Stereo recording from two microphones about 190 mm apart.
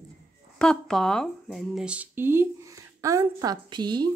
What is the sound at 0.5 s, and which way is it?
Speech, 5° left (ahead or behind).